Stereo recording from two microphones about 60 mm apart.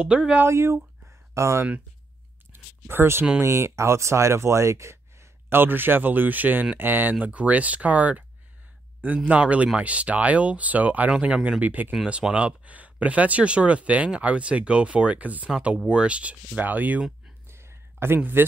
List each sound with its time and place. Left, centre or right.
0.0 s speech: centre
0.5 s speech: right
1.0 s a sound: right
2.5 s speech: right
3.3 s speech: right
5.6 s speech: right
9.3 s speech: right
12.1 s speech: centre
17.5 s a sound: right